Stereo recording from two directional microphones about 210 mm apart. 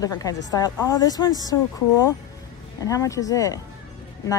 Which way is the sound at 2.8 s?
15° left (ahead or behind).